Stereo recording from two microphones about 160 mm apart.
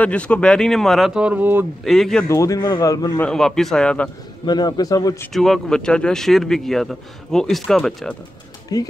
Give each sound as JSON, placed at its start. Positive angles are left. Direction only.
{"t": 0.0, "sound": "speech", "side_deg": 10}
{"t": 1.9, "sound": "speech", "side_deg": 0}
{"t": 2.2, "sound": "a man's voice", "side_deg": 20}
{"t": 3.2, "sound": "speech", "side_deg": 5}
{"t": 4.5, "sound": "a man's voice", "side_deg": 25}
{"t": 5.3, "sound": "speech", "side_deg": 0}
{"t": 8.7, "sound": "a man's voice", "side_deg": 25}